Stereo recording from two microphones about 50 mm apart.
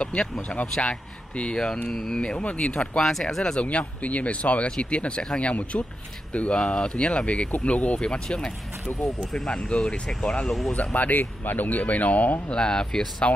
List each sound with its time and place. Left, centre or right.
0.0 s speech: centre
1.9 s speech: centre
2.1 s speech: left
3.0 s speech: centre
3.6 s speech: left
8.0 s speech: centre
9.8 s speech: centre
10.7 s speech: left
12.4 s speech: centre
13.2 s speech: left